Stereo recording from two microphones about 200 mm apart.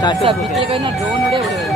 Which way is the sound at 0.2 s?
25° right (ahead or behind).